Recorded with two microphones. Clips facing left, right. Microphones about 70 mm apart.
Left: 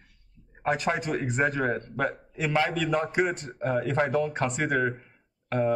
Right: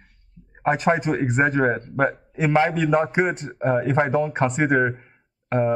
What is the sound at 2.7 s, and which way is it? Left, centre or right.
Speech, right.